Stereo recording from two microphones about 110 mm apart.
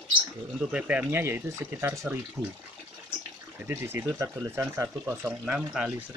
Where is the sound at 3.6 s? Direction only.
20° right (ahead or behind).